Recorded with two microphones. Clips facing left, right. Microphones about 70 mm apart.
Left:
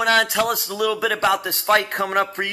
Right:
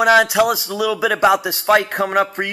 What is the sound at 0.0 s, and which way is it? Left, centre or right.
Speech, centre.